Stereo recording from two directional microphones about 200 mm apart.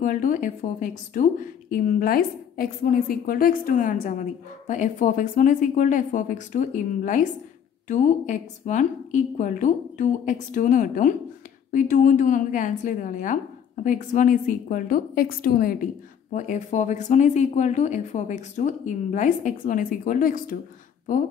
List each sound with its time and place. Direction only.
0.0 s a woman's voice: 40° left (ahead or behind)